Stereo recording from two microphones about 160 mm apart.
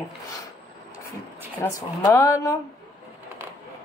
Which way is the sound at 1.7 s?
20° left (ahead or behind).